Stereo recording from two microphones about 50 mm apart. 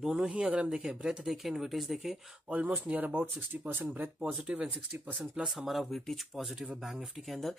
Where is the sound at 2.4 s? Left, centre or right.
Right.